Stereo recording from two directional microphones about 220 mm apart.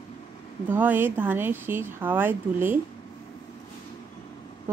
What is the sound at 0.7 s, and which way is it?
A woman's voice, 10° right (ahead or behind).